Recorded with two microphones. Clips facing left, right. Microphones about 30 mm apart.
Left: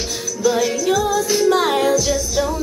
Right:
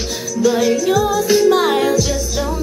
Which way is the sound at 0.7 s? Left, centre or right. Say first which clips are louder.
Right 3 dB; centre.